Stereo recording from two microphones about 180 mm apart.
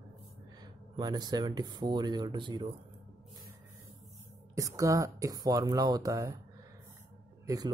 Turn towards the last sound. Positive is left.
turn(degrees=-20)  # may be behind; listen again after turning